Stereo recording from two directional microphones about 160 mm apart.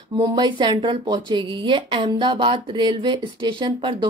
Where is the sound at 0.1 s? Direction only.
30° right (ahead or behind).